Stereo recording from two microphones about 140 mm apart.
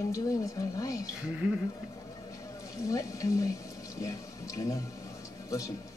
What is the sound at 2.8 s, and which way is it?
Speech, 25° left (ahead or behind).